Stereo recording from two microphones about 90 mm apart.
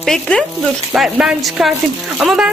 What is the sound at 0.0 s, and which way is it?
Speech, 5° left (ahead or behind).